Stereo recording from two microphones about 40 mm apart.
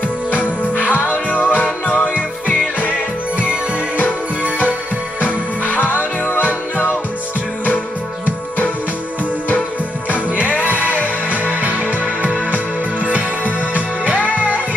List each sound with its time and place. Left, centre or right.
0.3 s music: left
5.2 s music: left
10.9 s music: right
14.1 s music: left